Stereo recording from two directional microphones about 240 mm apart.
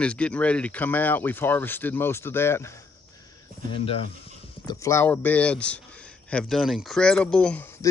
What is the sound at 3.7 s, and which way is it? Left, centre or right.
Speech, left.